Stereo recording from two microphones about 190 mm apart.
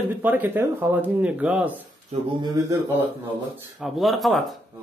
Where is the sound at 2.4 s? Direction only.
20° right (ahead or behind).